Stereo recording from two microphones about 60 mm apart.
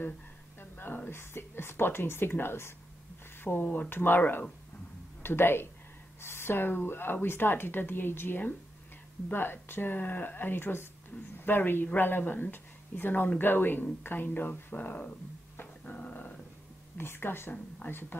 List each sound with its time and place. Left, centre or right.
0.6 s a woman's voice: left
3.3 s a sound: left
3.6 s speech: left
3.9 s speech: left
15.8 s dog: left
16.9 s speech: left